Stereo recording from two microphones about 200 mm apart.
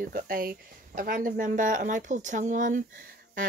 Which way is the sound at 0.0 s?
45° right (ahead or behind).